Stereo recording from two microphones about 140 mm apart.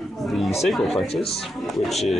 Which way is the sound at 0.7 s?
Centre (ahead or behind).